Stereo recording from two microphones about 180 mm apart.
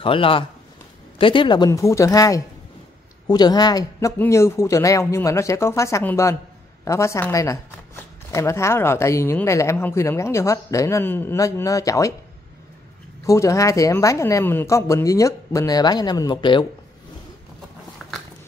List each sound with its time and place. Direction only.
0.0 s speech: 30° left (ahead or behind)
13.2 s speech: 15° left (ahead or behind)